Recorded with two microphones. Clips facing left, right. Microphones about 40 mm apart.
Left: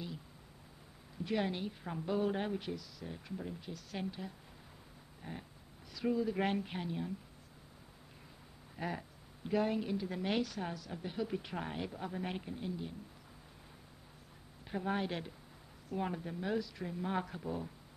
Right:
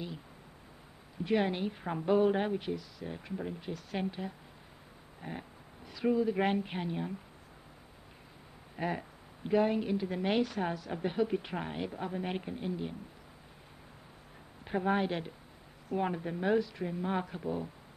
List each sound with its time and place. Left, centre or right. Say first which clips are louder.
1.2 s a woman's voice: right 6 dB; right
5.2 s a sound: right 5 dB; right
5.9 s a woman's voice: right 5 dB; right
8.7 s a woman's voice: right 5 dB; right
11.2 s a woman's voice: right 5 dB; right
14.6 s a woman's voice: right 6 dB; right